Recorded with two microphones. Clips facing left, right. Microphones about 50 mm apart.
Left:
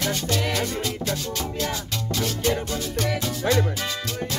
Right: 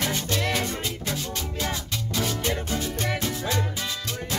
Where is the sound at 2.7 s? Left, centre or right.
Right.